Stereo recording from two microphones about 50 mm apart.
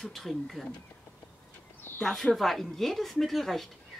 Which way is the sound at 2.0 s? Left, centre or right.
Centre.